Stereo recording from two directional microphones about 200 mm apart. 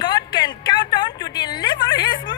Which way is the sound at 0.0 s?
20° left (ahead or behind).